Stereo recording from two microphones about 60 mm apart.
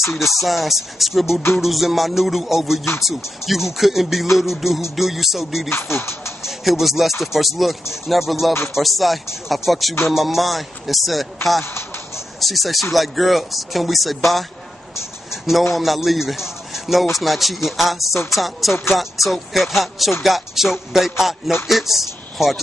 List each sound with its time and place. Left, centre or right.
0.4 s speech: centre
5.7 s speech: left
6.4 s speech: centre
12.4 s speech: centre
15.7 s a man's voice: centre